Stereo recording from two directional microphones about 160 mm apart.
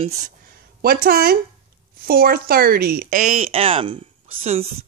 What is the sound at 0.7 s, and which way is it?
A woman's voice, 70° right (ahead or behind).